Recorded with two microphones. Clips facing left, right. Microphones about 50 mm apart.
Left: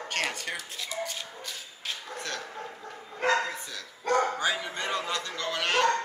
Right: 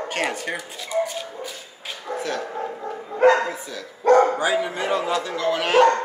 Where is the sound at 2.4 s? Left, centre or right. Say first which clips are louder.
Right 11 dB; right.